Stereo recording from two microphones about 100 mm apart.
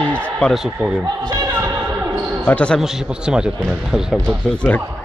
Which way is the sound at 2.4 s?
10° left (ahead or behind).